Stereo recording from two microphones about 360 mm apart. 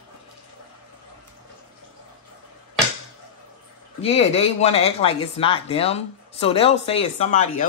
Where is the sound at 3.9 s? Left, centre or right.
Centre.